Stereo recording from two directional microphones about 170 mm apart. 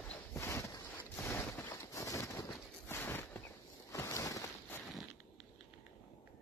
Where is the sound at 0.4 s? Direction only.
15° left (ahead or behind).